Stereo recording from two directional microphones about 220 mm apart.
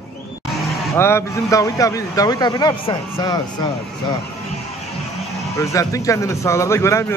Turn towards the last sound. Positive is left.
turn(degrees=10)  # may be behind; listen again after turning